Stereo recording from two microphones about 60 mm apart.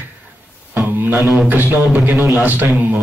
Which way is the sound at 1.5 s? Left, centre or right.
Right.